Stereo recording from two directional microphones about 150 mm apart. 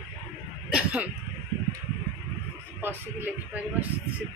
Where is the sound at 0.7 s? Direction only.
10° right (ahead or behind).